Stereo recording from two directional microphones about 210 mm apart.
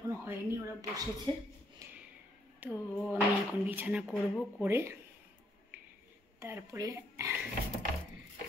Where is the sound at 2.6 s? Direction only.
10° right (ahead or behind).